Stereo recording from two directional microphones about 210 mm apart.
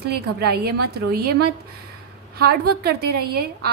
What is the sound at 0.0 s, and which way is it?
A woman's voice, 50° right (ahead or behind).